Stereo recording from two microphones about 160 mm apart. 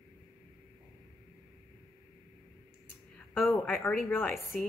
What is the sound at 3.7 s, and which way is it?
Speech, 10° left (ahead or behind).